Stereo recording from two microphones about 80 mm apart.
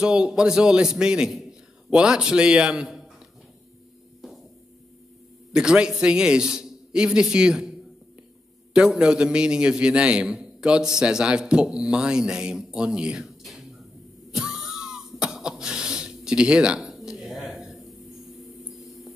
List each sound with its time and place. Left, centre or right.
0.0 s a man's voice: centre
5.5 s a man's voice: centre
8.7 s a man's voice: centre
13.4 s a sound: centre